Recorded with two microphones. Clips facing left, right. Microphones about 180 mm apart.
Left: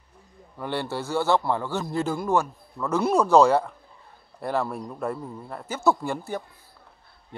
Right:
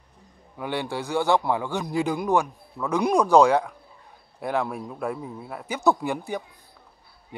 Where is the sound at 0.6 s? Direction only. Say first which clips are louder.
Even; 15° right (ahead or behind).